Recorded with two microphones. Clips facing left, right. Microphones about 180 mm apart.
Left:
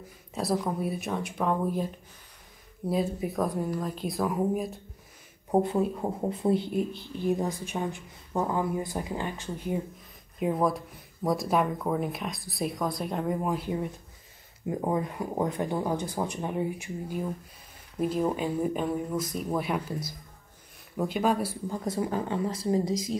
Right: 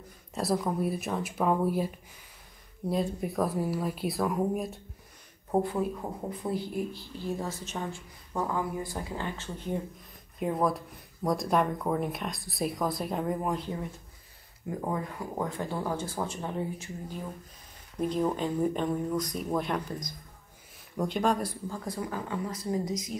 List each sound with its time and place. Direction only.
0.3 s speech: centre (ahead or behind)
2.9 s speech: centre (ahead or behind)
5.5 s speech: 20° left (ahead or behind)
10.4 s speech: centre (ahead or behind)
14.7 s speech: 20° left (ahead or behind)
21.6 s speech: 20° left (ahead or behind)